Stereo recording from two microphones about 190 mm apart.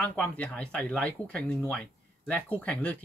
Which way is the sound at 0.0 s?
5° left (ahead or behind).